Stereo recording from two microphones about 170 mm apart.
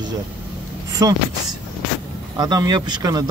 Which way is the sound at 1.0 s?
20° right (ahead or behind).